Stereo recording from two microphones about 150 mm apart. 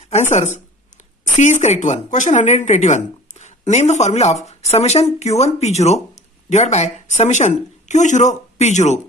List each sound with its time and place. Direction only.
0.3 s speech: 50° left (ahead or behind)